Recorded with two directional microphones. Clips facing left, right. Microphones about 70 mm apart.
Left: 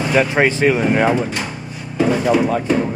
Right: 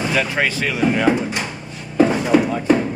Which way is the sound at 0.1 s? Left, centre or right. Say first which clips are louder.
Left 8 dB; left.